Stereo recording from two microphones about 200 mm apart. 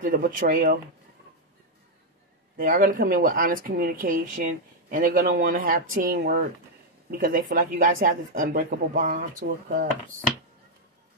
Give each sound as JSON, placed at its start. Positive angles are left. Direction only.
{"t": 0.0, "sound": "a woman's voice", "side_deg": -45}
{"t": 2.5, "sound": "a woman's voice", "side_deg": -45}